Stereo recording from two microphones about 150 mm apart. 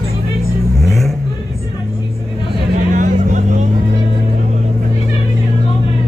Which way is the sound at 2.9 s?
55° right (ahead or behind).